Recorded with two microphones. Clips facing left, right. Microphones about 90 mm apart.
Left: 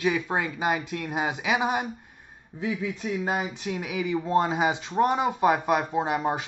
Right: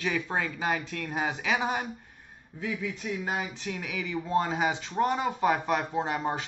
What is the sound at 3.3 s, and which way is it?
Speech, 20° left (ahead or behind).